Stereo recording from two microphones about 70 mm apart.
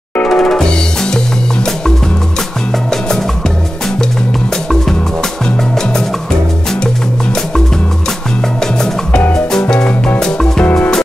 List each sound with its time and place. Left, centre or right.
0.3 s music: centre
9.3 s music: centre
10.6 s music: left